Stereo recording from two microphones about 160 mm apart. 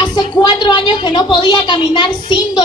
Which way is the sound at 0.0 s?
25° left (ahead or behind).